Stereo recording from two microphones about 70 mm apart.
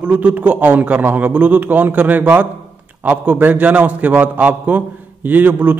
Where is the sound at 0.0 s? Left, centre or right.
Centre.